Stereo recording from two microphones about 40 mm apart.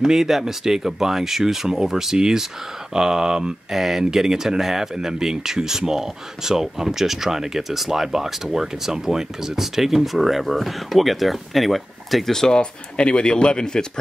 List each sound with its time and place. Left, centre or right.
0.0 s speech: centre
12.3 s speech: centre